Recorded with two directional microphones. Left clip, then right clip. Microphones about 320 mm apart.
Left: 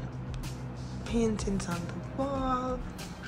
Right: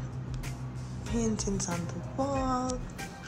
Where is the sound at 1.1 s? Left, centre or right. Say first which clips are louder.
Left 2 dB; centre.